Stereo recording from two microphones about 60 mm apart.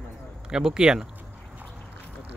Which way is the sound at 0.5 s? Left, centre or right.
Centre.